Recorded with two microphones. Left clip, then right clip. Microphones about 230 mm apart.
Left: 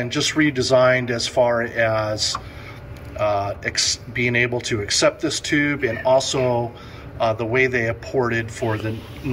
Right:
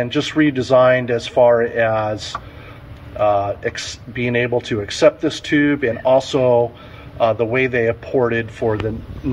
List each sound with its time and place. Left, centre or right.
0.0 s speech: right